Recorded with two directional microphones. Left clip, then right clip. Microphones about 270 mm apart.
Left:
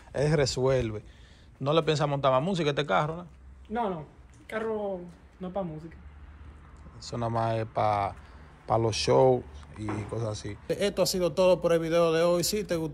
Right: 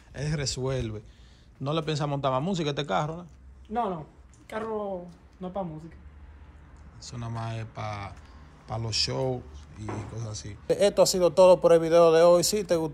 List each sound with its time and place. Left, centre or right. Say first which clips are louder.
0.1 s a man's voice: left 7 dB; centre
3.7 s speech: right 1 dB; right
7.0 s speech: left 9 dB; centre